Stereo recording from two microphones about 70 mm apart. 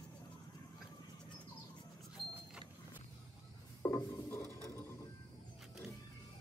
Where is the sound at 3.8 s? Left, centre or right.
Left.